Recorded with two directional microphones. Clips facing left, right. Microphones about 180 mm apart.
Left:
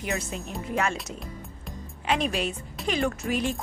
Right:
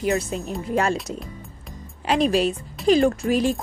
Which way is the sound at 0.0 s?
35° right (ahead or behind).